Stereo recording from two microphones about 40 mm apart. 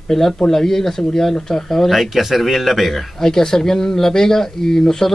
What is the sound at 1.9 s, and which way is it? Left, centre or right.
Speech, centre.